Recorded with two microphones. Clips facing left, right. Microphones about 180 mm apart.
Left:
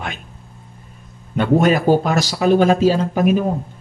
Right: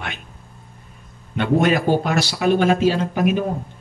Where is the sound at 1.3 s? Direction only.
40° left (ahead or behind).